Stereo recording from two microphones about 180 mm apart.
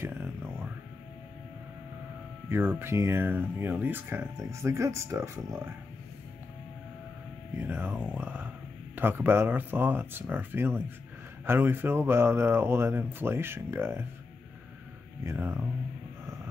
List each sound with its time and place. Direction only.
0.0 s music: 15° right (ahead or behind)
2.5 s speech: 10° right (ahead or behind)
7.6 s speech: 10° right (ahead or behind)
15.2 s speech: 10° right (ahead or behind)